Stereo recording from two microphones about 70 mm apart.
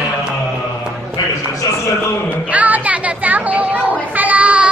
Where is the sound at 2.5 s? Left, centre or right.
Right.